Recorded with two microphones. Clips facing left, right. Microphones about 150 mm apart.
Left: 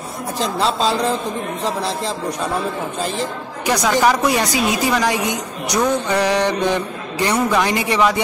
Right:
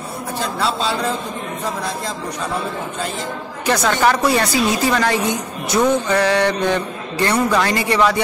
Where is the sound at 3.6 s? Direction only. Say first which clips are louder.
Left 1 dB; 15° left (ahead or behind).